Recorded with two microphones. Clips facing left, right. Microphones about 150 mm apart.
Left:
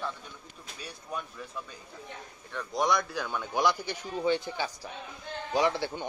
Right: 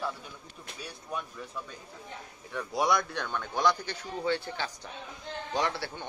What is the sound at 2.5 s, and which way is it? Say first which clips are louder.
A man's voice: even; 5° right (ahead or behind).